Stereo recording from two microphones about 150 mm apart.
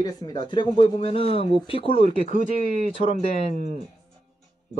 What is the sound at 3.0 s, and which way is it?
Speech, 40° left (ahead or behind).